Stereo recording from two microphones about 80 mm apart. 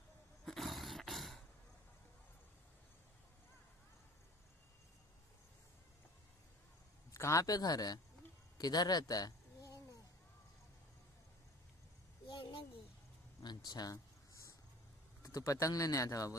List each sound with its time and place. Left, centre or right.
0.5 s dog: centre
7.2 s speech: left
12.3 s a sound: left
13.4 s speech: left
15.2 s speech: left